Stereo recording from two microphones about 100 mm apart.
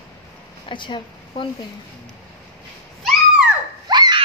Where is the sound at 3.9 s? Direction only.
45° right (ahead or behind).